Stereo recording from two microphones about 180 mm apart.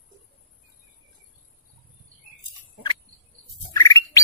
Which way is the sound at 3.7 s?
20° left (ahead or behind).